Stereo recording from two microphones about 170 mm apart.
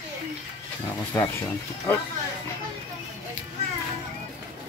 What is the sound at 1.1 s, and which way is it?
Speech, 15° left (ahead or behind).